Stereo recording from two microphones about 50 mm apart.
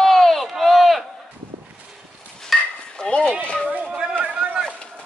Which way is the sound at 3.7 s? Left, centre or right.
Right.